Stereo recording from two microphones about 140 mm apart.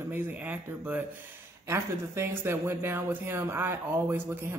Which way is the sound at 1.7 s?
15° right (ahead or behind).